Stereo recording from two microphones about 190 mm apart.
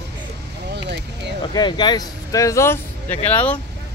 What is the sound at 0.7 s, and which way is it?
Speech, 60° right (ahead or behind).